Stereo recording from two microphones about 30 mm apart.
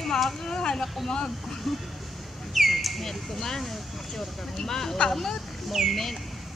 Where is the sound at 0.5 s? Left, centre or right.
Left.